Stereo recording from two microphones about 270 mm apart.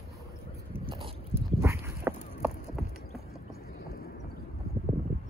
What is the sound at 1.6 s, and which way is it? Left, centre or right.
Clip-clop, centre.